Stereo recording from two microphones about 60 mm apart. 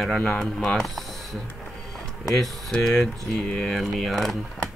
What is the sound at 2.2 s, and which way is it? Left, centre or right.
Speech, centre.